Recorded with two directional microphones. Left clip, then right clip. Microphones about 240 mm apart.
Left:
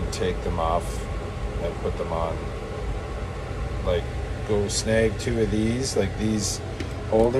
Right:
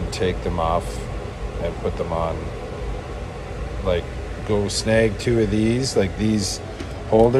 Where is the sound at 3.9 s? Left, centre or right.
Centre.